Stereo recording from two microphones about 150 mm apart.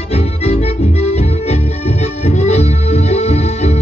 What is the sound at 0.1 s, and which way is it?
Music, 45° left (ahead or behind).